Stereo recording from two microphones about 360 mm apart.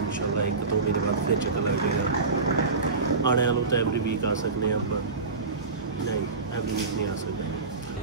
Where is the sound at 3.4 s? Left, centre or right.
Left.